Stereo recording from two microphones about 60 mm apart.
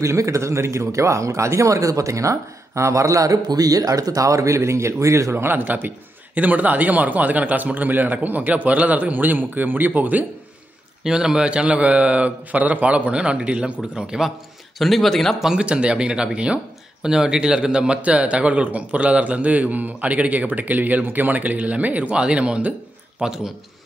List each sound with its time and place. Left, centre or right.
0.0 s speech: right
11.1 s a man's voice: centre
14.8 s a man's voice: centre
15.6 s a man's voice: centre
23.2 s speech: centre